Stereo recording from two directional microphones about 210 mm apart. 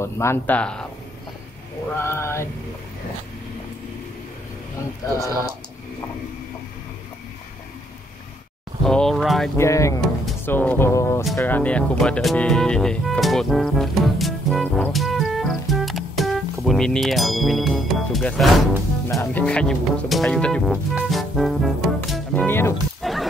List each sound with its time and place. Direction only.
0.0 s speech: 10° left (ahead or behind)
2.0 s speech: 10° left (ahead or behind)
5.0 s speech: 15° left (ahead or behind)
8.8 s speech: centre (ahead or behind)
9.6 s speech: 15° left (ahead or behind)
19.0 s speech: 10° left (ahead or behind)
20.9 s music: centre (ahead or behind)
23.0 s a sound: centre (ahead or behind)